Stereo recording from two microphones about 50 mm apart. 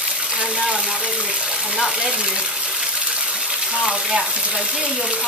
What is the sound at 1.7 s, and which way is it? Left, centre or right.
Speech, centre.